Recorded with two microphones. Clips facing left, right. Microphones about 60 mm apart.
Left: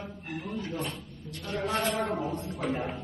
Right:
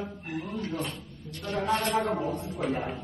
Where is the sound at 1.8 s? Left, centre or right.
Centre.